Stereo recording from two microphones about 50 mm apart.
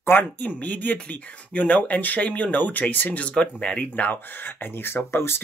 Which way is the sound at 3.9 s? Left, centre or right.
Left.